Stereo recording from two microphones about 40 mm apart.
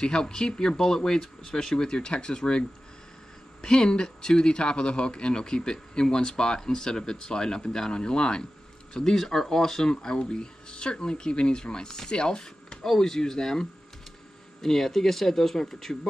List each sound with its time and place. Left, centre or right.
0.0 s speech: centre
3.6 s speech: centre
9.1 s speech: centre; by 12.7 s left
12.8 s speech: centre